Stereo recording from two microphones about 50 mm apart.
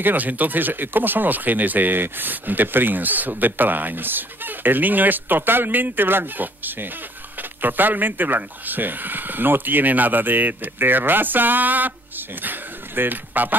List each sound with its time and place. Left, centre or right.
0.0 s speech: right